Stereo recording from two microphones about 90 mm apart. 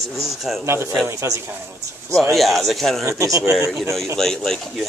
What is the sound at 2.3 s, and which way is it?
Speech, centre (ahead or behind).